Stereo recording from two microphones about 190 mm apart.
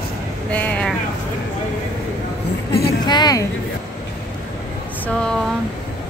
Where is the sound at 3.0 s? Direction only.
20° left (ahead or behind).